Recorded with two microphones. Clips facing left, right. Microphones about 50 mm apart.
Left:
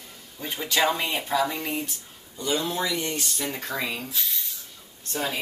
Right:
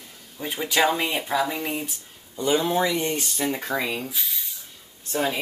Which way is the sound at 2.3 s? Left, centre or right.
Right.